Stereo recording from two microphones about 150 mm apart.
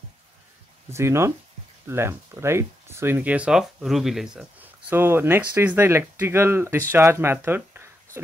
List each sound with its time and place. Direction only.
0.8 s speech: 20° right (ahead or behind)